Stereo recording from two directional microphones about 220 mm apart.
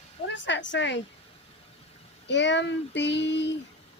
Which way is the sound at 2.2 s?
55° left (ahead or behind).